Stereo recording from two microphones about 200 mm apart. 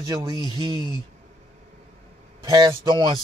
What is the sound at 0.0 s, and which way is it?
Speech, 20° right (ahead or behind).